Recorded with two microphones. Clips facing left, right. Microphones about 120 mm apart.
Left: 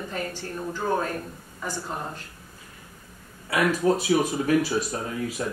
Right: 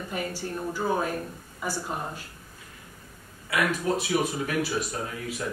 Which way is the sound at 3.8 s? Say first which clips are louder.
Left 7 dB; 35° left (ahead or behind).